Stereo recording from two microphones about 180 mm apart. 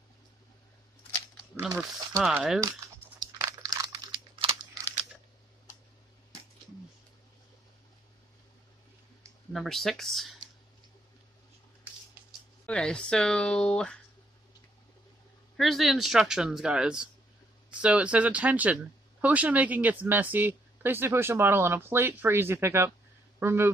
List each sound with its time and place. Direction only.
1.8 s speech: centre (ahead or behind)
3.2 s crumpling: 20° right (ahead or behind)
9.5 s speech: centre (ahead or behind)
12.6 s speech: 5° left (ahead or behind)
15.5 s speech: centre (ahead or behind)